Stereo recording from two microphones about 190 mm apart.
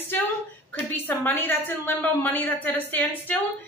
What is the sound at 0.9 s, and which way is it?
Speech, 10° left (ahead or behind).